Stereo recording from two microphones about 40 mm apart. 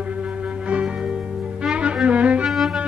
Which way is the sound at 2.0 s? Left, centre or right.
Right.